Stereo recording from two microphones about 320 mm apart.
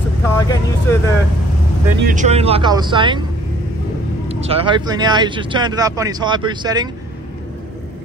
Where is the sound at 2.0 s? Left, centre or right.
Right.